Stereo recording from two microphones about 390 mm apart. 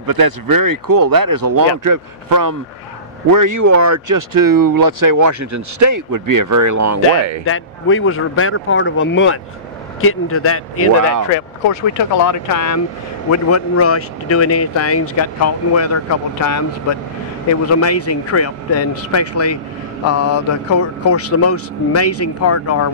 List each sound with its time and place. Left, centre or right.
0.0 s speech: right
7.4 s speech: left
11.3 s speech: left
17.7 s speech: left